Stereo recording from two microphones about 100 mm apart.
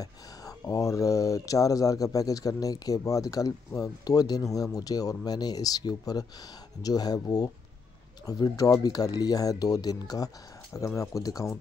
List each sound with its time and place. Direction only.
0.0 s speech: 35° left (ahead or behind)